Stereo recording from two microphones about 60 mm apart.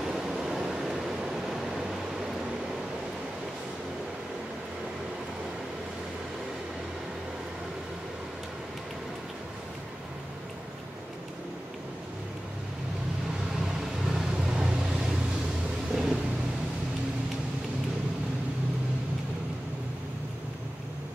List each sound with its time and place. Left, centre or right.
0.0 s vehicle: centre
13.7 s vehicle: centre